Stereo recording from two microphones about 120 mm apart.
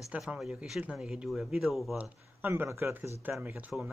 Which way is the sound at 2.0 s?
15° right (ahead or behind).